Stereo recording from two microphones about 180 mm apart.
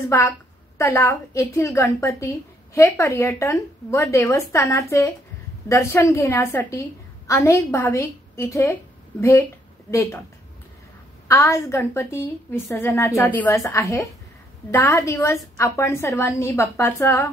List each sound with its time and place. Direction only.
0.7 s a woman's voice: 15° left (ahead or behind)
11.2 s a woman's voice: 15° left (ahead or behind)